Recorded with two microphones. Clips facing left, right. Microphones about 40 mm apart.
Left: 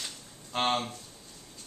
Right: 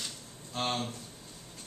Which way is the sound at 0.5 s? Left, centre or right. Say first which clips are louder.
Left 5 dB; left.